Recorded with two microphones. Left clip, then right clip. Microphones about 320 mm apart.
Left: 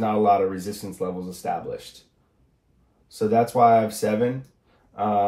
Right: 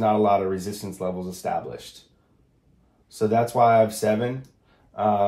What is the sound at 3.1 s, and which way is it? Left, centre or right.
Speech, centre.